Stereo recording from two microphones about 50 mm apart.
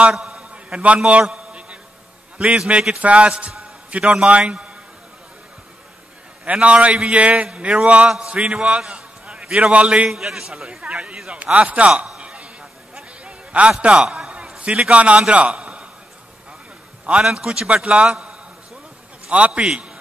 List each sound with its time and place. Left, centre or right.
0.2 s a sound: centre
2.3 s a man's voice: right
6.4 s a man's voice: right
10.0 s a man's voice: centre; by 11.9 s right
12.2 s a sound: right
13.7 s a man's voice: right
14.0 s a man's voice: centre
14.6 s a man's voice: right
17.0 s a man's voice: right
19.2 s a man's voice: right